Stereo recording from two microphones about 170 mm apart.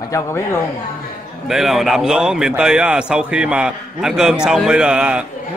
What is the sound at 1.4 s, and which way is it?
A man's voice, centre (ahead or behind).